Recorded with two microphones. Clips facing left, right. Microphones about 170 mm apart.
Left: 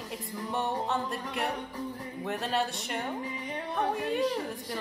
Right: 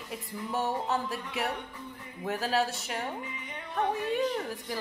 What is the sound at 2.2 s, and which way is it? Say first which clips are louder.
Speech: right 2 dB; centre (ahead or behind).